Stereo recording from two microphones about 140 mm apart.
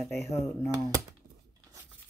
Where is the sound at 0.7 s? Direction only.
25° right (ahead or behind).